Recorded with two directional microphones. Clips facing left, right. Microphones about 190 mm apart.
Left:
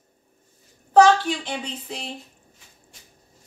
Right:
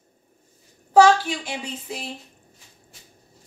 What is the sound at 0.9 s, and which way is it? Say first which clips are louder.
A woman's voice: even; 10° right (ahead or behind).